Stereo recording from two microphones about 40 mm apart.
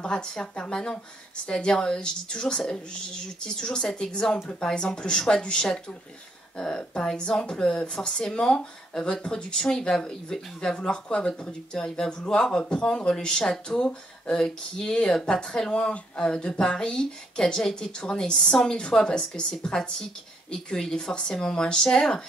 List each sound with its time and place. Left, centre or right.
0.0 s speech: left
15.7 s speech: left; by 18.7 s centre
18.7 s speech: left